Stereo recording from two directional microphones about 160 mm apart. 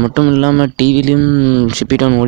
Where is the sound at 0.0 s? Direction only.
45° right (ahead or behind).